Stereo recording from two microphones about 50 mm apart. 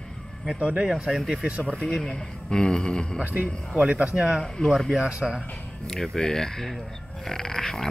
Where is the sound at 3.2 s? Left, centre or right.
Right.